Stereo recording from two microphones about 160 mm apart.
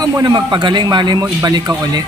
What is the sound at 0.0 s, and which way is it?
A man's voice, 25° right (ahead or behind).